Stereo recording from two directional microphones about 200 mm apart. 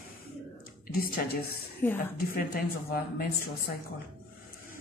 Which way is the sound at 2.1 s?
45° left (ahead or behind).